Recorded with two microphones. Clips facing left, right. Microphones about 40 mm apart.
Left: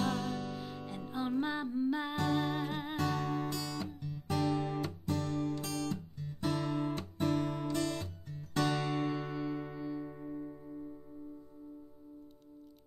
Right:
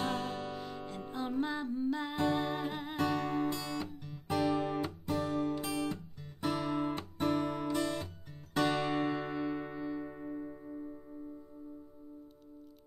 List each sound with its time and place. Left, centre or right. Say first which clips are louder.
0.0 s music: left 1 dB; centre
0.6 s music: right 1 dB; centre
2.1 s music: right 1 dB; centre
3.0 s music: right 3 dB; centre